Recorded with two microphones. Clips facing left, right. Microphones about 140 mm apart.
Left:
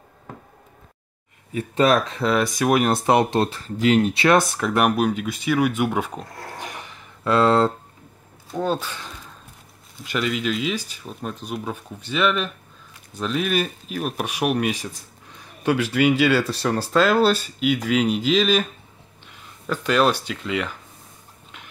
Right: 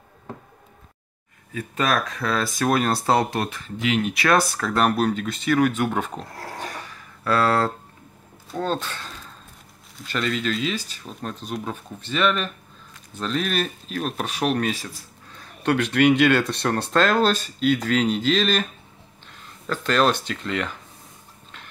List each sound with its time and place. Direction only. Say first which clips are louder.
1.5 s speech: left 5 dB; 25° left (ahead or behind)
8.5 s speech: left 2 dB; 10° left (ahead or behind)